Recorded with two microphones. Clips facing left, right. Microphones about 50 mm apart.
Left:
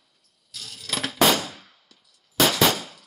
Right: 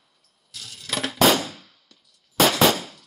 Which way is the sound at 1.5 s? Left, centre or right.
Centre.